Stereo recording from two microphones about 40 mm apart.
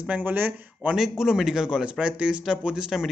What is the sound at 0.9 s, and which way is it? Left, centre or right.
A man's voice, centre.